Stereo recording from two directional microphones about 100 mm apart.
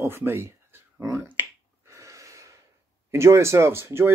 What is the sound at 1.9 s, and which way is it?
Snort, 30° right (ahead or behind).